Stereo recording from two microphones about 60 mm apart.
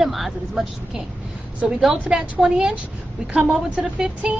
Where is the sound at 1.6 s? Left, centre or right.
Centre.